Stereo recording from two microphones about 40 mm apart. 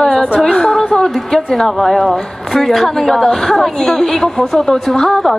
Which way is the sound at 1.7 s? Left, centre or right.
Centre.